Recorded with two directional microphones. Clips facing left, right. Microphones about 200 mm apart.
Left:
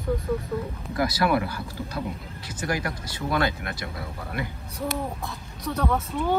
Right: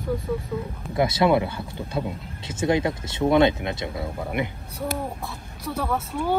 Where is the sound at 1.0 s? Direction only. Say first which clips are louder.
Right 4 dB; 25° right (ahead or behind).